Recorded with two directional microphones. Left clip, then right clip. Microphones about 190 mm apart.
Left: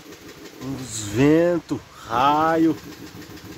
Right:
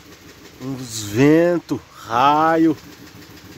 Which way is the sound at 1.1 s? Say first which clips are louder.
Right 3 dB; 35° right (ahead or behind).